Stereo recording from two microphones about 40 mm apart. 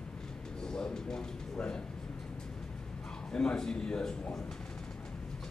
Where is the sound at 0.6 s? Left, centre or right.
Centre.